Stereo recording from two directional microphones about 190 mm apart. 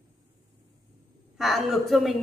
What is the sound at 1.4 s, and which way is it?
Speech, centre (ahead or behind).